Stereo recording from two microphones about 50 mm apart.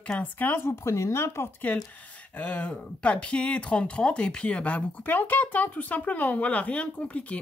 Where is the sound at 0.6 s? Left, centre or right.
Left.